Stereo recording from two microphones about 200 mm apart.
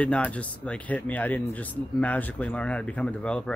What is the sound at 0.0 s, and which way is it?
Speech, 5° left (ahead or behind).